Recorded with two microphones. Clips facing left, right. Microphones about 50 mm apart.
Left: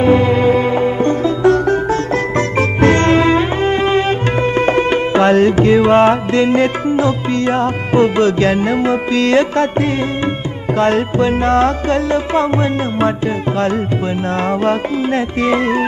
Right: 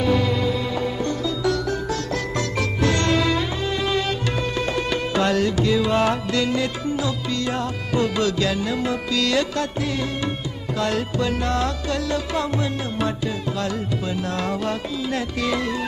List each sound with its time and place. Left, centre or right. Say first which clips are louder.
0.0 s music: left 9 dB; left
14.5 s music: left 10 dB; left